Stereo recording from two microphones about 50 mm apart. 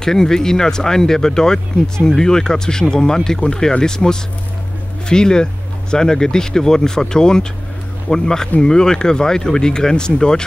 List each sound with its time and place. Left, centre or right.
0.0 s speech: centre